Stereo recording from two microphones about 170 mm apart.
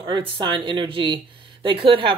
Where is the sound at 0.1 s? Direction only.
30° right (ahead or behind).